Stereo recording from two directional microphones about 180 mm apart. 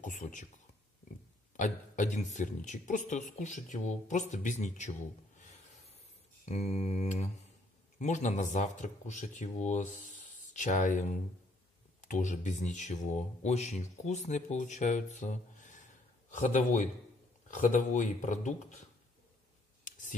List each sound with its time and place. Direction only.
0.0 s speech: 45° left (ahead or behind)
1.6 s speech: 45° left (ahead or behind)
6.4 s speech: 35° left (ahead or behind)
19.8 s a sound: 45° left (ahead or behind)